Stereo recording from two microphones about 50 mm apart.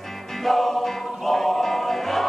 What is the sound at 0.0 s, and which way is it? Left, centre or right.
Music, centre.